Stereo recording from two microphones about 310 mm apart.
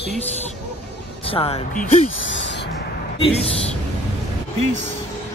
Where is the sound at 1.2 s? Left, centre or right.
Centre.